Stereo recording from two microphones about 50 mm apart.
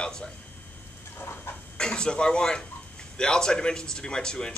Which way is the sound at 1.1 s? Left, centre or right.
Left.